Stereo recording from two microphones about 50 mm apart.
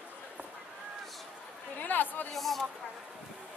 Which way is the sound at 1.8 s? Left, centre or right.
Left.